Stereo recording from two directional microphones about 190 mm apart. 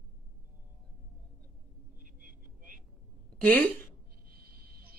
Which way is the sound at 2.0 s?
45° right (ahead or behind).